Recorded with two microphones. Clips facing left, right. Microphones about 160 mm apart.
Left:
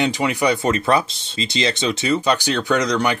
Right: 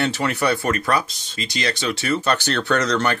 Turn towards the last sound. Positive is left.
turn(degrees=15)  # may be behind; listen again after turning